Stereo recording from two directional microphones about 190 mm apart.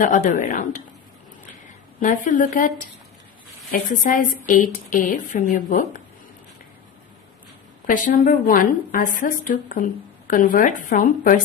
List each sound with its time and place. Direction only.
0.0 s a woman's voice: 45° left (ahead or behind)
2.0 s a woman's voice: 45° left (ahead or behind)
3.9 s a woman's voice: 45° left (ahead or behind)
7.8 s a woman's voice: 45° left (ahead or behind)